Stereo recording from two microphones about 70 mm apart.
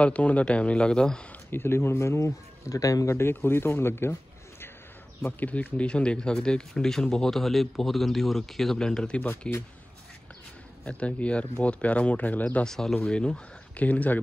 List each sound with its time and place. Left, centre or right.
0.0 s speech: centre
1.5 s speech: left
3.2 s a man's voice: left
5.2 s speech: left
10.9 s speech: centre
12.6 s speech: centre; by 14.2 s left